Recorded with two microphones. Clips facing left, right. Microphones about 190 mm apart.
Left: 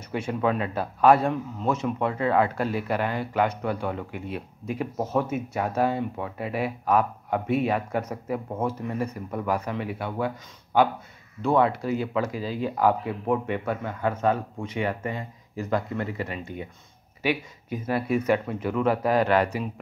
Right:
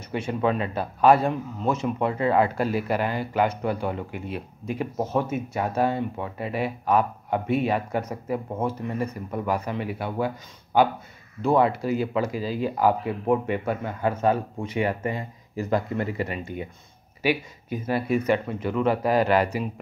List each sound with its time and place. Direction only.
0.1 s a man's voice: centre (ahead or behind)